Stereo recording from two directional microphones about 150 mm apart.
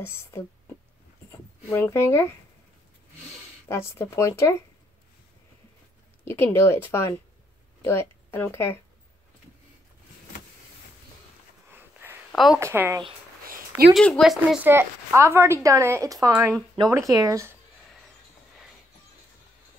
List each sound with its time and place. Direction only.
0.0 s speech: 15° left (ahead or behind)
1.7 s speech: 15° left (ahead or behind)
3.6 s speech: 20° left (ahead or behind)
6.2 s speech: 15° left (ahead or behind)
11.7 s a sound: 15° right (ahead or behind)
12.3 s a sound: centre (ahead or behind)
12.5 s speech: 15° right (ahead or behind)
13.5 s a sound: 70° right (ahead or behind)
13.9 s speech: 5° left (ahead or behind)
14.7 s speech: 15° right (ahead or behind)